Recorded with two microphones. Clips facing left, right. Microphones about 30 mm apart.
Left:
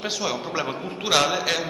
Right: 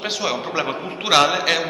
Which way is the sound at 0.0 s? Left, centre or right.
Right.